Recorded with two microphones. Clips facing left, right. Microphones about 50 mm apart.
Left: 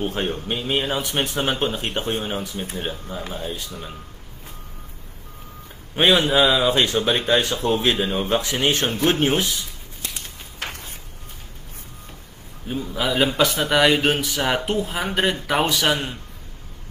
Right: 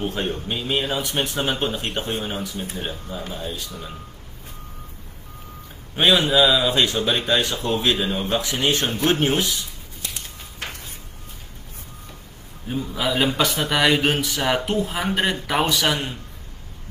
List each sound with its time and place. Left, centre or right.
0.1 s a man's voice: left
0.6 s speech: centre
0.8 s a man's voice: left
6.2 s a man's voice: left
8.8 s speech: centre
9.2 s speech: centre
10.6 s a sound: left
12.6 s speech: centre